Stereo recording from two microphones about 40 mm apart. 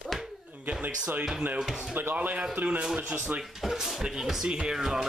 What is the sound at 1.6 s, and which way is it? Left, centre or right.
Speech, centre.